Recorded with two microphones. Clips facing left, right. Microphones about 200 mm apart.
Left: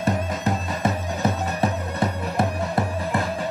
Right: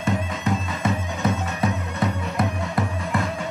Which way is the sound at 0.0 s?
35° left (ahead or behind).